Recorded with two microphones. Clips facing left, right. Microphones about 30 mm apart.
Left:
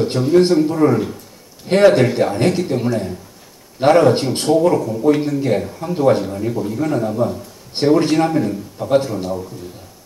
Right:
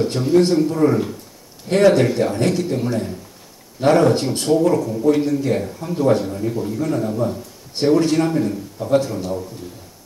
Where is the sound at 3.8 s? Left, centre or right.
Left.